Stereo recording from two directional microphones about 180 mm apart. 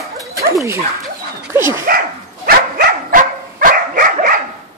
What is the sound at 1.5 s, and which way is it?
Speech, 15° right (ahead or behind).